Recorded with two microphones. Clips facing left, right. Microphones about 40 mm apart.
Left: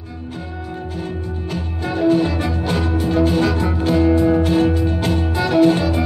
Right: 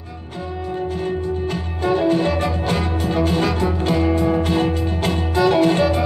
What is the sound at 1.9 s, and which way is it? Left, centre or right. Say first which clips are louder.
Music: left 1 dB; centre.